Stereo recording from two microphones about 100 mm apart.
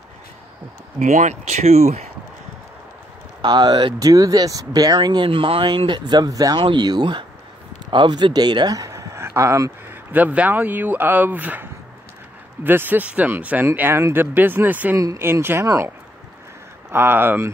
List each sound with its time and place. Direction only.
1.6 s speech: 90° right
3.4 s speech: 45° right (ahead or behind)
6.6 s speech: 50° right (ahead or behind); by 9.9 s 30° right (ahead or behind)
10.1 s speech: 15° right (ahead or behind)
15.0 s speech: 30° right (ahead or behind)
15.6 s speech: 35° right (ahead or behind)
16.9 s speech: 20° right (ahead or behind)